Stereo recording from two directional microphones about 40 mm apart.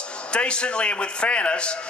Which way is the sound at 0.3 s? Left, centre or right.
Left.